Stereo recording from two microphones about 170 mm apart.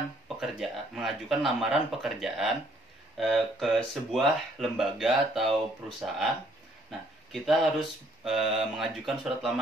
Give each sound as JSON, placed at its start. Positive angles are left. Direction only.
{"t": 0.4, "sound": "speech", "side_deg": 0}